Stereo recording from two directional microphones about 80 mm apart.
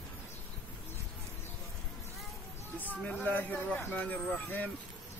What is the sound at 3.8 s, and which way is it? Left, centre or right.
Speech, left.